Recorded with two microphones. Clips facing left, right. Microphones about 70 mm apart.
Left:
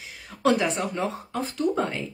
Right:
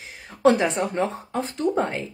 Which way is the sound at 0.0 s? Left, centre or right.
Right.